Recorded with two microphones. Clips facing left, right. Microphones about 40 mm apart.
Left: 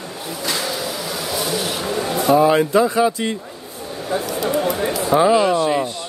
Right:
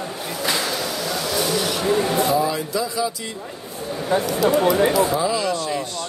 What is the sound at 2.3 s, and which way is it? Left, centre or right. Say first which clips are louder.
Speech: left 7 dB; left.